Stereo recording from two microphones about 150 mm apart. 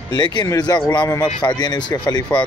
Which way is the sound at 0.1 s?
30° left (ahead or behind).